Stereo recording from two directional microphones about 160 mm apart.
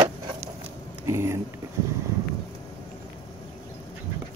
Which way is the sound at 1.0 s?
15° right (ahead or behind).